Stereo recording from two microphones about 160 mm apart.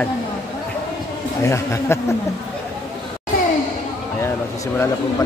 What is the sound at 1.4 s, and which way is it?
Speech, 15° left (ahead or behind).